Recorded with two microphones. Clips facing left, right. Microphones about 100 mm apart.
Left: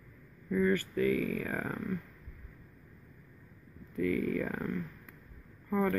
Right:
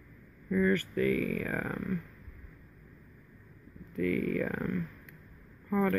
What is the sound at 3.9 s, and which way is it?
Speech, 30° left (ahead or behind).